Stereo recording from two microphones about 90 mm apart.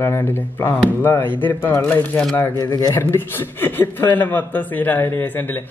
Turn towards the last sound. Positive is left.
turn(degrees=25)  # may be behind; listen again after turning